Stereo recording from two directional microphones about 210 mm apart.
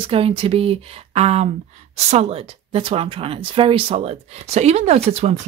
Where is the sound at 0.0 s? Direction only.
25° right (ahead or behind).